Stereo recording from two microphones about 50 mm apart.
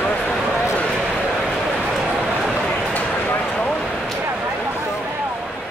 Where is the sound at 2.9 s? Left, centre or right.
Left.